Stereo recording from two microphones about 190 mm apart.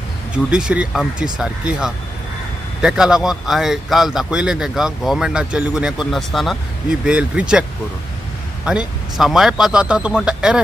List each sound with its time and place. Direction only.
0.5 s a man's voice: 5° right (ahead or behind)
8.6 s a man's voice: 5° right (ahead or behind)